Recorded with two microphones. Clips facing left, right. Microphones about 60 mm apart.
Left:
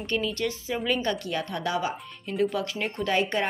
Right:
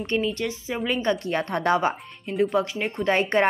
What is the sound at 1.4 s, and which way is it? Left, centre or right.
Speech, right.